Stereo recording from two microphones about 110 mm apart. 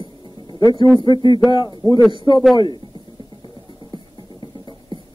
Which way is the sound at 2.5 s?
45° left (ahead or behind).